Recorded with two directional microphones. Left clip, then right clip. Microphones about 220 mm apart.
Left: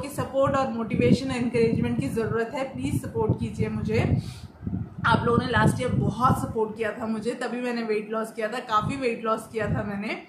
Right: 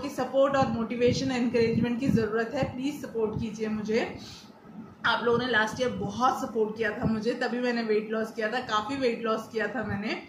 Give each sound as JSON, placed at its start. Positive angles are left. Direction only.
{"t": 0.4, "sound": "a man's voice", "side_deg": 15}
{"t": 5.0, "sound": "a man's voice", "side_deg": 15}